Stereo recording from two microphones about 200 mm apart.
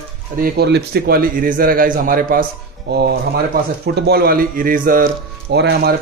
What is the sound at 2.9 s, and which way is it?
Speech, 55° right (ahead or behind).